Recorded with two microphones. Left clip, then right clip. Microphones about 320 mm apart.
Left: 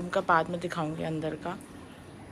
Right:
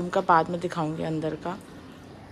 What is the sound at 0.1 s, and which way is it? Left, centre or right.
A woman's voice, centre.